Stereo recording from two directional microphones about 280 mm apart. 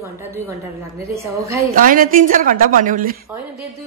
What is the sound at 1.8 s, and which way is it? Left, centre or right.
A woman's voice, right.